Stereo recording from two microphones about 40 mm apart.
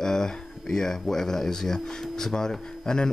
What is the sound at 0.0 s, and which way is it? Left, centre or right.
Speech, centre.